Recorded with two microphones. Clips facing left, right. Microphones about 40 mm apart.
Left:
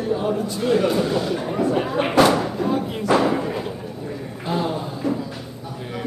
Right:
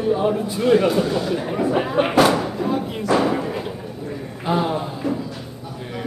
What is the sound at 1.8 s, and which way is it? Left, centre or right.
Slam, centre.